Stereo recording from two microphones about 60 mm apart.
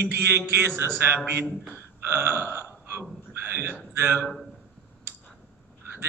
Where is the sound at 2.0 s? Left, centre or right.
Right.